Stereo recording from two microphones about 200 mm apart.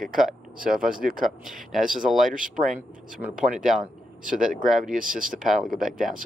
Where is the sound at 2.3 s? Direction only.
40° right (ahead or behind).